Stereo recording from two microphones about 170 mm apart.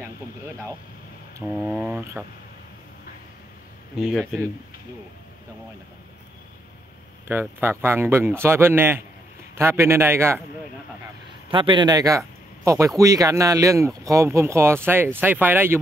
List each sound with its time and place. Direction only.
1.4 s speech: 5° right (ahead or behind)
4.0 s speech: centre (ahead or behind)
7.2 s speech: 15° right (ahead or behind)
11.5 s speech: 30° right (ahead or behind); by 15.8 s 10° right (ahead or behind)